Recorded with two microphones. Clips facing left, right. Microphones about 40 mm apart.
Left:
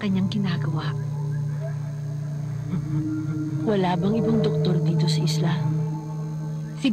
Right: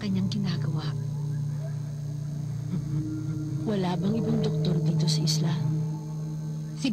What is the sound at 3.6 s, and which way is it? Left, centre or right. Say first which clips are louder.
Speech: left 6 dB; left.